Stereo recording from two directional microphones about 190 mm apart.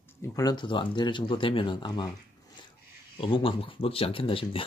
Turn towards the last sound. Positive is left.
turn(degrees=30)  # may be behind; listen again after turning